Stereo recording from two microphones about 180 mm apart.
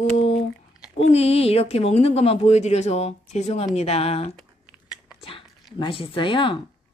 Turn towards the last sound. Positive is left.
turn(degrees=30)  # may be behind; listen again after turning